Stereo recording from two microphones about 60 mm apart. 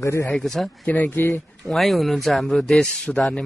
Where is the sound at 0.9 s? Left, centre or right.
Left.